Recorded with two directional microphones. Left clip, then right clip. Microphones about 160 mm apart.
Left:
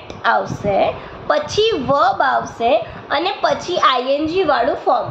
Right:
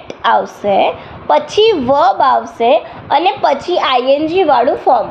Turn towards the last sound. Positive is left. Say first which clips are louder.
# right 5 dB
turn(degrees=-35)  # may be behind; listen again after turning